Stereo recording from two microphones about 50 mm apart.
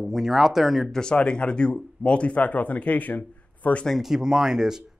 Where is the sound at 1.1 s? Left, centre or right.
Left.